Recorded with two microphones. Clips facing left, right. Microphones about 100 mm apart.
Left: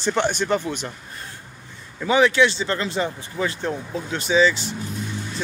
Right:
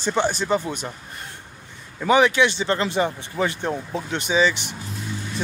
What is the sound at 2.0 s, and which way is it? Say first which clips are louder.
Speech: even; 20° right (ahead or behind).